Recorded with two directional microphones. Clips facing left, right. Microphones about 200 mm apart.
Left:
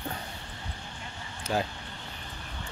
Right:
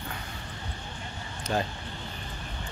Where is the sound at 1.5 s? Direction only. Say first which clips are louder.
Even; 5° left (ahead or behind).